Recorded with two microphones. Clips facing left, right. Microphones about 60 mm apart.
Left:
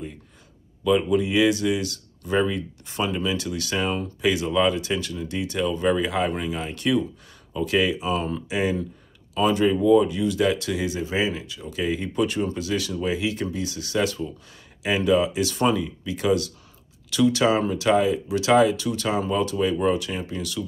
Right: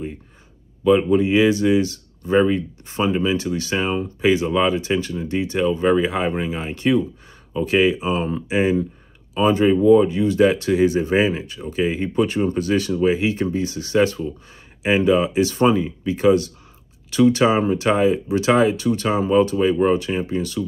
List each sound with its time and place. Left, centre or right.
0.8 s speech: right